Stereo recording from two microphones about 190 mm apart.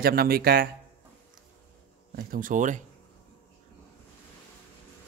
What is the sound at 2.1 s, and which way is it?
Speech, 45° right (ahead or behind).